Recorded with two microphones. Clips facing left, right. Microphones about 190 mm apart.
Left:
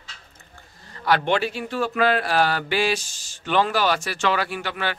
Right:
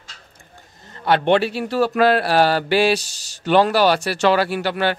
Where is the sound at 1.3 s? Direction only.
30° right (ahead or behind).